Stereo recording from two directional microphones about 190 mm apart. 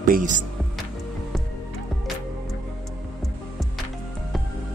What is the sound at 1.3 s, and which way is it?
Music, centre (ahead or behind).